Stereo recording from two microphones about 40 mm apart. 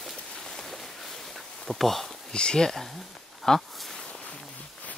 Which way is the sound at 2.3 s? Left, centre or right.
Centre.